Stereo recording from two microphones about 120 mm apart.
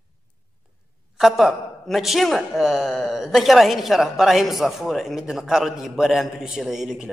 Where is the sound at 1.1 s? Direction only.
Centre (ahead or behind).